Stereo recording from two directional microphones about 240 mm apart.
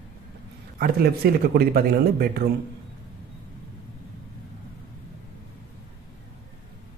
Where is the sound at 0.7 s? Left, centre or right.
Right.